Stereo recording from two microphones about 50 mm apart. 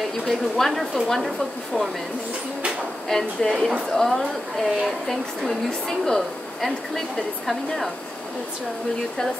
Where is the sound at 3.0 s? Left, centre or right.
Centre.